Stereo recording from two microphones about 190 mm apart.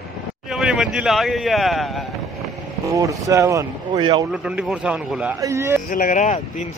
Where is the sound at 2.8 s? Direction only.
15° right (ahead or behind).